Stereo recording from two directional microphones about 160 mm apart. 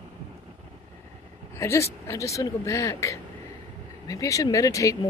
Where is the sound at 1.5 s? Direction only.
15° left (ahead or behind).